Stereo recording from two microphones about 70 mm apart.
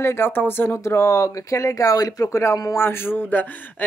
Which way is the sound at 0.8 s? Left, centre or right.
Left.